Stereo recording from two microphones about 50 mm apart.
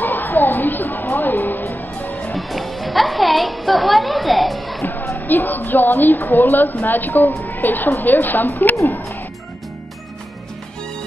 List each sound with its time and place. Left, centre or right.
0.0 s a sound: left
1.1 s music: left
2.3 s music: centre
5.2 s a woman's voice: left